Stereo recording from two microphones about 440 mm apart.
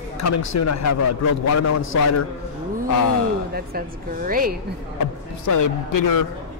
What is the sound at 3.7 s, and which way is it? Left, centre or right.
Speech, centre.